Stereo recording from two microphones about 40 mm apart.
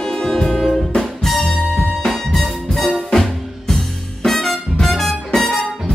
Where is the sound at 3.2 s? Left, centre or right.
Centre.